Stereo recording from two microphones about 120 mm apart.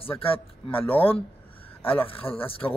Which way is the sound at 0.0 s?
50° left (ahead or behind).